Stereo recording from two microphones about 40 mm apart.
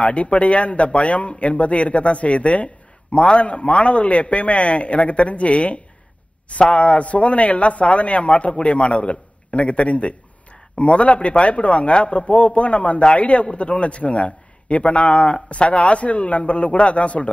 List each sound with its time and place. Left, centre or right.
0.0 s speech: left